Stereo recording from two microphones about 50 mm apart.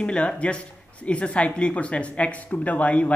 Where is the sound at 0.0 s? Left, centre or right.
Left.